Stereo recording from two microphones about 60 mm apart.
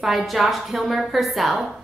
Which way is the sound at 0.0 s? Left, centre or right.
Centre.